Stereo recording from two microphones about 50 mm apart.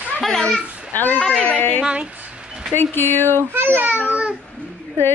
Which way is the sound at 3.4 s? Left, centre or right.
Right.